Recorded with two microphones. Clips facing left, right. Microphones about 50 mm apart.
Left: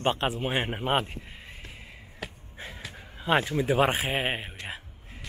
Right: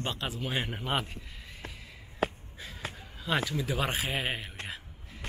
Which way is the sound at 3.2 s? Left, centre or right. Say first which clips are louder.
Left 6 dB; left.